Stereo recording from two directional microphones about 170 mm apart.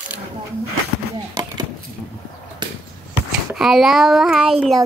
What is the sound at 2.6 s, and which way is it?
Basketball bounce, 25° right (ahead or behind).